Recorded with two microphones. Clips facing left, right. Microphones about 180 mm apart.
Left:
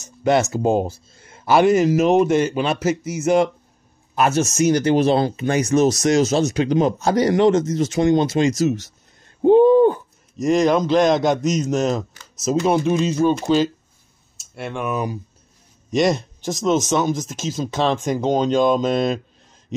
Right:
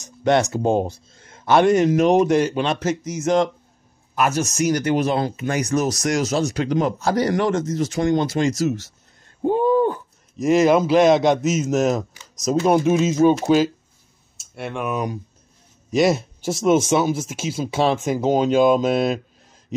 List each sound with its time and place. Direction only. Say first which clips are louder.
0.0 s speech: even; 5° left (ahead or behind)
4.1 s speech: left 2 dB; 25° left (ahead or behind)
9.4 s a sound: left 6 dB; 25° left (ahead or behind)
10.3 s speech: right 1 dB; 5° right (ahead or behind)